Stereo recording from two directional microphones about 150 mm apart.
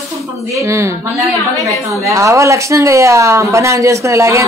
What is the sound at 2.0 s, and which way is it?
Speech, 20° right (ahead or behind).